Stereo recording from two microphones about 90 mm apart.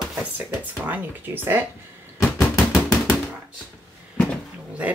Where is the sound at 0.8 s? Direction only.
20° right (ahead or behind).